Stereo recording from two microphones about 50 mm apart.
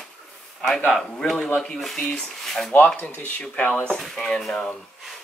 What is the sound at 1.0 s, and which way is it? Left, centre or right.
Speech, centre.